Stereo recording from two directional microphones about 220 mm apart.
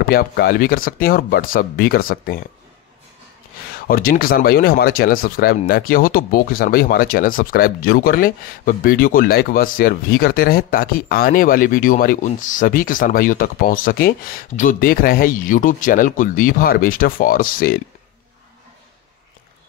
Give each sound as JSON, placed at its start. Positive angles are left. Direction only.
{"t": 0.1, "sound": "speech", "side_deg": 45}
{"t": 3.8, "sound": "speech", "side_deg": 40}